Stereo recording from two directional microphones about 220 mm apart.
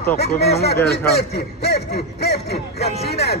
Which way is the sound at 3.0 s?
45° left (ahead or behind).